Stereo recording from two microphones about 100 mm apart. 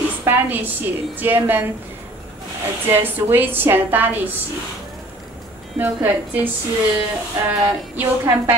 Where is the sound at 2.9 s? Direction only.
20° right (ahead or behind).